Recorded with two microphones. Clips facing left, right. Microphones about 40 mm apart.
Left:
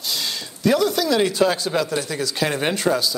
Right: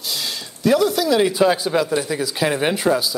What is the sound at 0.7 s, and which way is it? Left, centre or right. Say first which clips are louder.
Speech: right 2 dB; centre.